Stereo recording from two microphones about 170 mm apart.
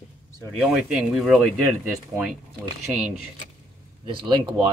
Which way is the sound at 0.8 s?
5° right (ahead or behind).